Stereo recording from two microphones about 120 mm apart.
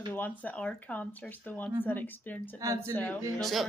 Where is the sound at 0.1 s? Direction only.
15° left (ahead or behind).